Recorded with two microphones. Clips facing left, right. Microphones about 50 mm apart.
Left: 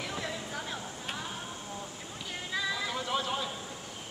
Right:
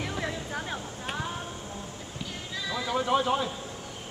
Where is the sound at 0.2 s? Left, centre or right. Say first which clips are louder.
Right 4 dB; right.